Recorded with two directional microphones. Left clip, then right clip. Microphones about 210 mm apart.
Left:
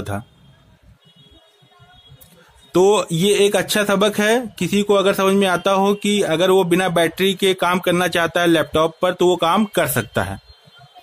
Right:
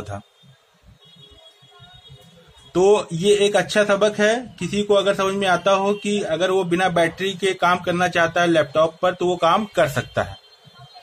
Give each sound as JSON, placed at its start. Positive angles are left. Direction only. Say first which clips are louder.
{"t": 0.1, "sound": "speech", "louder": "left 5 dB", "side_deg": 40}
{"t": 2.7, "sound": "speech", "louder": "left 2 dB", "side_deg": 50}